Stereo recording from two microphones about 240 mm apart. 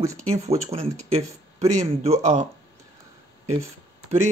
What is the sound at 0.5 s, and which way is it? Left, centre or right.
Speech, right.